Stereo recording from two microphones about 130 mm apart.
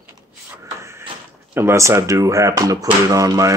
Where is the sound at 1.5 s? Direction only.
20° right (ahead or behind).